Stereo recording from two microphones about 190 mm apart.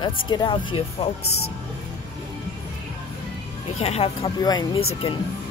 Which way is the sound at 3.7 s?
35° left (ahead or behind).